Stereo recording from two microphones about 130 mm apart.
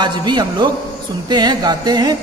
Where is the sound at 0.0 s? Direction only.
35° right (ahead or behind).